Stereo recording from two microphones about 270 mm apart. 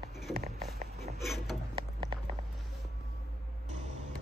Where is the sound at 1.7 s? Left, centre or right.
Centre.